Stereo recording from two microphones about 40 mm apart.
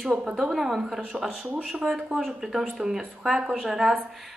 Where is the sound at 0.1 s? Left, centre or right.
Right.